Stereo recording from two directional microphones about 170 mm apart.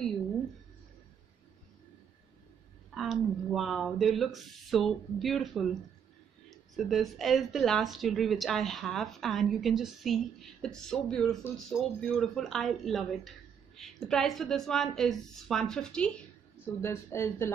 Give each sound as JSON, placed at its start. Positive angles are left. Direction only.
{"t": 2.9, "sound": "a woman's voice", "side_deg": 0}
{"t": 16.8, "sound": "speech", "side_deg": 15}